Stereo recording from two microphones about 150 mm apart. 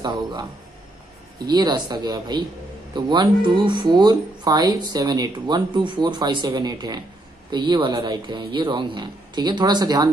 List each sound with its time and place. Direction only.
0.0 s speech: 30° right (ahead or behind)